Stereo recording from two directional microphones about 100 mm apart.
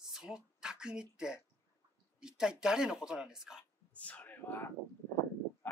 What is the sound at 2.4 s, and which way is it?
Speech, 5° right (ahead or behind).